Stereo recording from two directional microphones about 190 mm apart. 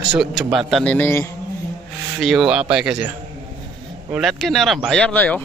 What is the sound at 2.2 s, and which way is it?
Speech, centre (ahead or behind).